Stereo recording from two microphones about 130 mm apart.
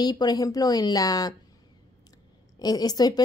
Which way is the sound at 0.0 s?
30° left (ahead or behind).